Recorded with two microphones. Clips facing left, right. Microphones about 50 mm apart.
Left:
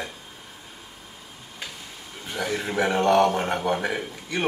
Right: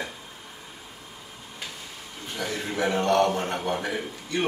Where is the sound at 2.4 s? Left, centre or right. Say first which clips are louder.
Left 3 dB; centre.